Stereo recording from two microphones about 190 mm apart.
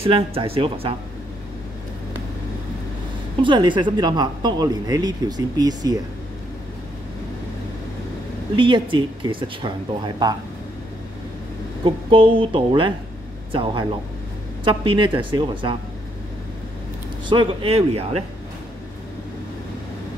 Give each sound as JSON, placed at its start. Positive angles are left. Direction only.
{"t": 0.0, "sound": "speech", "side_deg": -30}
{"t": 3.4, "sound": "speech", "side_deg": -25}
{"t": 8.5, "sound": "speech", "side_deg": -25}
{"t": 11.8, "sound": "speech", "side_deg": -25}
{"t": 17.3, "sound": "speech", "side_deg": -25}